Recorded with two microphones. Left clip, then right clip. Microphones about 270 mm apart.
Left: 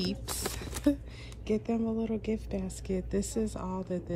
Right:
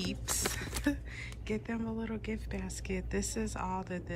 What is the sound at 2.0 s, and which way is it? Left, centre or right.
Speech, centre.